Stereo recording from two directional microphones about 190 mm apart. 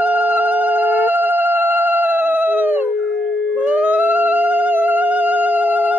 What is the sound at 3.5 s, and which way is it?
Howl, 5° right (ahead or behind).